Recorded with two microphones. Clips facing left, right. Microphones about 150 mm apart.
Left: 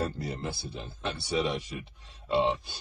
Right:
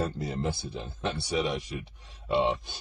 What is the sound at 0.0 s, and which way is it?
Speech, 20° right (ahead or behind).